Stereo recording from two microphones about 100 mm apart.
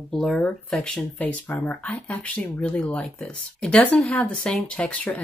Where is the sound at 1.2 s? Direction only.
20° left (ahead or behind).